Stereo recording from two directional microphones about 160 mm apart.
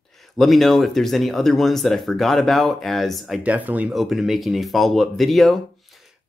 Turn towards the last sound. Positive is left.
turn(degrees=0)  # may be behind; listen again after turning